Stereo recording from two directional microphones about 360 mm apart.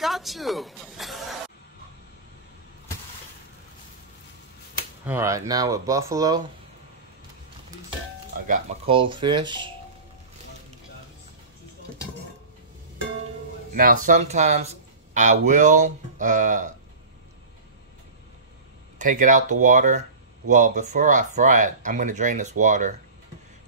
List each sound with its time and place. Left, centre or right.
0.0 s a woman's voice: centre
5.0 s speech: centre
8.5 s speech: centre
13.7 s speech: right
18.9 s speech: right